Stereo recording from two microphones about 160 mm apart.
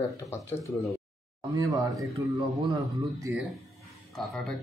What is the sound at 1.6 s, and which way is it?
Speech, 20° right (ahead or behind).